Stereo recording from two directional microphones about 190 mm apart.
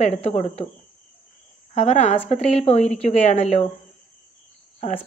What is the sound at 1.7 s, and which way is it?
Speech, 35° left (ahead or behind).